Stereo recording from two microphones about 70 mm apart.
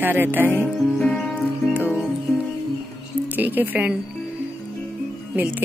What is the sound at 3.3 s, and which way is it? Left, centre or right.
Speech, right.